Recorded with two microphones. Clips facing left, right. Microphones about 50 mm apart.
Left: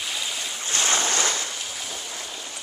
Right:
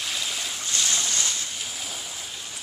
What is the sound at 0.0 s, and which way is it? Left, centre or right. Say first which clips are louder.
Waves: even; centre.